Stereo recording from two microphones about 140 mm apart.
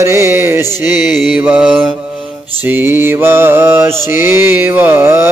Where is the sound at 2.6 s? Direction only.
15° right (ahead or behind).